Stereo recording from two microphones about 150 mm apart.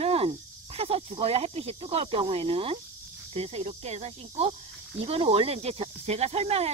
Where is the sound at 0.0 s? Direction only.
40° right (ahead or behind).